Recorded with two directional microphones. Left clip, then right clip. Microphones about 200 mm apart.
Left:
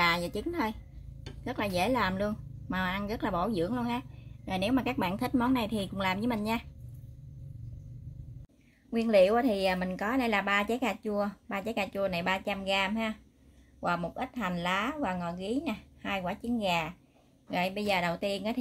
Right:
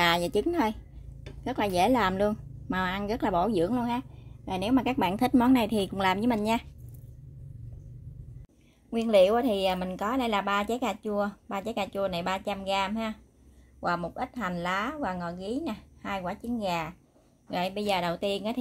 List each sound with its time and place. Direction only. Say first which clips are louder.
0.0 s a woman's voice: right 4 dB; 40° right (ahead or behind)
8.9 s a woman's voice: right 2 dB; 15° right (ahead or behind)